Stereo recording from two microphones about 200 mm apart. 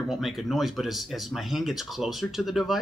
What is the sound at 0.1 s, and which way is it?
Speech, centre (ahead or behind).